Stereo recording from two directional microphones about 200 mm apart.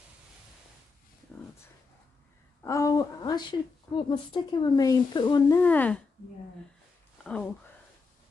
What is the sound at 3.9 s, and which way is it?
Speech, 25° left (ahead or behind).